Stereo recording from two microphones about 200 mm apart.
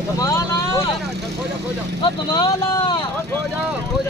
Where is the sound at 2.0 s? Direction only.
25° left (ahead or behind).